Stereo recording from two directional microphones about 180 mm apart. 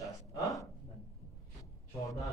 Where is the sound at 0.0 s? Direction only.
20° left (ahead or behind).